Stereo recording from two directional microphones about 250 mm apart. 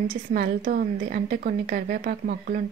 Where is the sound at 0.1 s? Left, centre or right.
Right.